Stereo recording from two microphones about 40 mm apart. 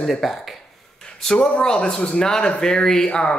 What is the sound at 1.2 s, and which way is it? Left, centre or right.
Speech, centre.